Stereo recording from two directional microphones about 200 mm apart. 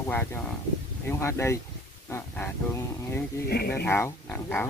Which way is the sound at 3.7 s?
10° left (ahead or behind).